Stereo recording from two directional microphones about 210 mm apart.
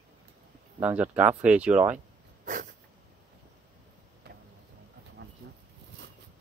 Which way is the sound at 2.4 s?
40° right (ahead or behind).